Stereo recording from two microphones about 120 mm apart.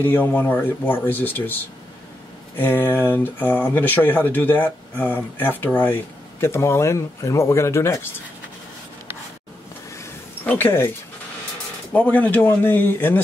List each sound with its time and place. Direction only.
0.0 s speech: 15° left (ahead or behind)
10.4 s speech: 15° left (ahead or behind)
11.9 s speech: 10° left (ahead or behind)